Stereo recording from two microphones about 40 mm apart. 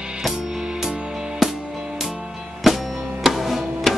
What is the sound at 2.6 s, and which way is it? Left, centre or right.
Music, centre.